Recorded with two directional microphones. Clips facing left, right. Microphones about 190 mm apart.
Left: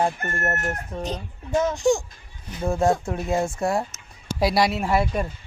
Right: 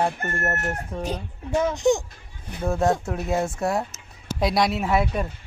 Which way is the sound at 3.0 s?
Centre (ahead or behind).